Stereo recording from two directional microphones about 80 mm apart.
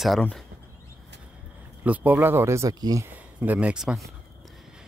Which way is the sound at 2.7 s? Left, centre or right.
Right.